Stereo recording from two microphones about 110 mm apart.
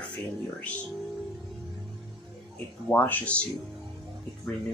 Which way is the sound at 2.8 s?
15° left (ahead or behind).